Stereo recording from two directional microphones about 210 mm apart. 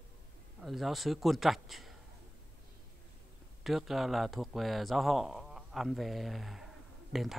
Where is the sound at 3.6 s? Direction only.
Centre (ahead or behind).